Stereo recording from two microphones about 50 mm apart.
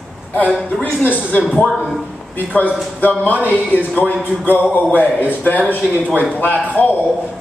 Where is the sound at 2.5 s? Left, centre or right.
Left.